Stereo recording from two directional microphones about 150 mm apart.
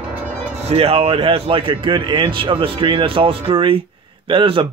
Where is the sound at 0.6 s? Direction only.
45° right (ahead or behind).